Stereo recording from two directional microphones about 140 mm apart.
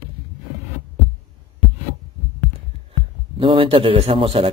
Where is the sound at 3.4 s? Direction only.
40° right (ahead or behind).